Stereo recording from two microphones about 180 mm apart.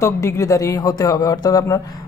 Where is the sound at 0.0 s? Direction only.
15° left (ahead or behind).